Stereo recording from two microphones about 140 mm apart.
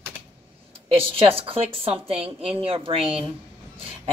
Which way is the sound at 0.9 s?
40° right (ahead or behind).